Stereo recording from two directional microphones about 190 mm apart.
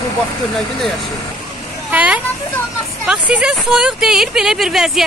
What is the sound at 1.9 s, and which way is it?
Speech, 5° right (ahead or behind).